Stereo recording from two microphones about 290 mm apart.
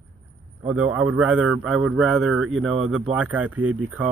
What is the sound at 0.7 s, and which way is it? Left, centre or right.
Speech, centre.